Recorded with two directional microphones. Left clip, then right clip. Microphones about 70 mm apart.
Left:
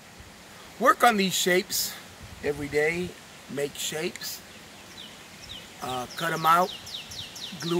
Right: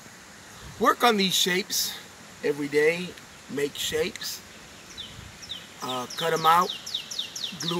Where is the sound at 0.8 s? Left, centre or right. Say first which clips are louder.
Left 1 dB; left.